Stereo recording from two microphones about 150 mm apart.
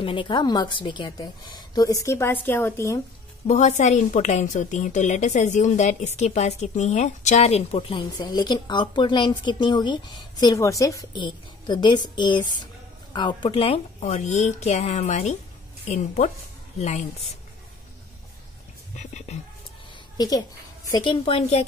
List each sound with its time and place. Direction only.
0.0 s speech: 35° left (ahead or behind); by 3.0 s 15° left (ahead or behind)
3.4 s a woman's voice: 50° left (ahead or behind)
8.2 s a woman's voice: 30° left (ahead or behind); by 15.3 s 50° left (ahead or behind)
16.7 s speech: 50° left (ahead or behind)
18.9 s a woman's voice: 50° left (ahead or behind)
20.2 s a woman's voice: 25° left (ahead or behind); by 21.6 s 45° left (ahead or behind)